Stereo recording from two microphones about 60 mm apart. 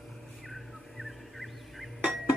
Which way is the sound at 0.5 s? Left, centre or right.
Centre.